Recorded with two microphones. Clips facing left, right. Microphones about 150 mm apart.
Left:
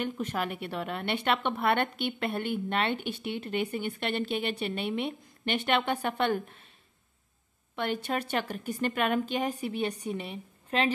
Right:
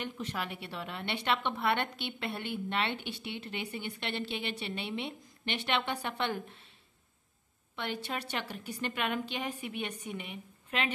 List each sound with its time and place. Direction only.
0.0 s a woman's voice: 50° left (ahead or behind)
7.7 s a woman's voice: 50° left (ahead or behind); by 10.9 s 35° left (ahead or behind)